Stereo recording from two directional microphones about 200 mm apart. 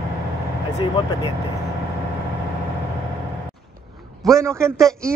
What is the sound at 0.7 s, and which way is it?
Speech, 20° left (ahead or behind).